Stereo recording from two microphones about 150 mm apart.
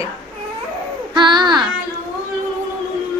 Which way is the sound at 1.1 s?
30° right (ahead or behind).